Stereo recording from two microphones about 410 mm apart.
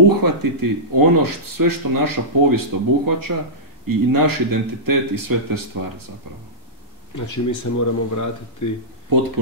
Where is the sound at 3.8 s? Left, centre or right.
Right.